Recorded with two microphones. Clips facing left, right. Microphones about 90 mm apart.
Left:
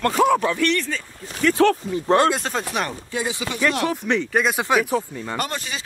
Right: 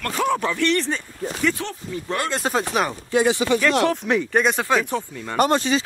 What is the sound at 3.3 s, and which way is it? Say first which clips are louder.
Speech: right 9 dB; 40° right (ahead or behind).